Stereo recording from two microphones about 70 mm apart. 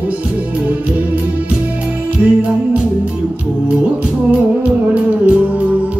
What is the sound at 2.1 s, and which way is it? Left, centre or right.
Music, centre.